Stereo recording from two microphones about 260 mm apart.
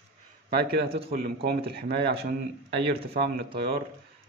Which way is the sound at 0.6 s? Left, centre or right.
Right.